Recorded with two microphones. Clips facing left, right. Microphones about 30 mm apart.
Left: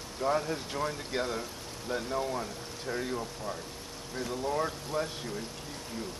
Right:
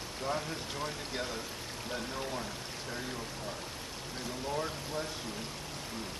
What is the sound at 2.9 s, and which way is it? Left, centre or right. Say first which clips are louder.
Speech: left 8 dB; left.